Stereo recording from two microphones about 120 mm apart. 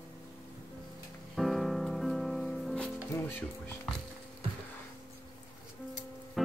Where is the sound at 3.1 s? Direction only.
20° left (ahead or behind).